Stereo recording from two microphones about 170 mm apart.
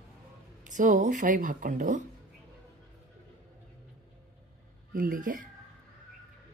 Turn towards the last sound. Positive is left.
turn(degrees=-50)  # may be behind; listen again after turning